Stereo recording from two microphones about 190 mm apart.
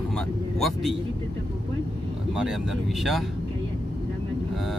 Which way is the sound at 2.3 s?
Centre (ahead or behind).